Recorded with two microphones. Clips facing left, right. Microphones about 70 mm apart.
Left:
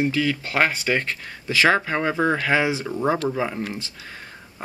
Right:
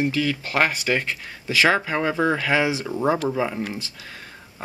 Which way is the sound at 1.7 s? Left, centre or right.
Centre.